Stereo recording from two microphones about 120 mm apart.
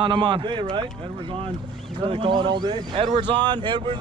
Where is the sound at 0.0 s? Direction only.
45° right (ahead or behind).